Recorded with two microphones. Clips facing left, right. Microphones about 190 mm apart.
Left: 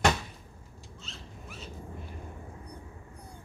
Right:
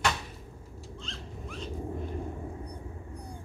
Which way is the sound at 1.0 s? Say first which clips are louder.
Right 4 dB; 5° left (ahead or behind).